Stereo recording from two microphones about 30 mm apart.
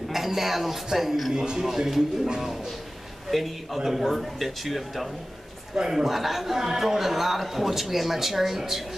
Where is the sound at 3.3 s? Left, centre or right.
Centre.